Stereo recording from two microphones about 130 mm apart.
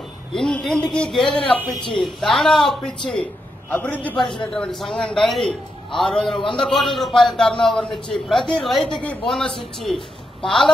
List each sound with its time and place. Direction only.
0.3 s a man's voice: 5° left (ahead or behind)
6.3 s a man's voice: 40° left (ahead or behind)
6.6 s speech: centre (ahead or behind)